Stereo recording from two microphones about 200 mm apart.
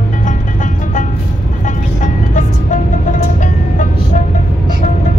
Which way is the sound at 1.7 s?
40° left (ahead or behind).